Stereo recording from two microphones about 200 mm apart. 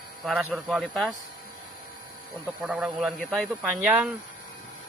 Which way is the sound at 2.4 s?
10° right (ahead or behind).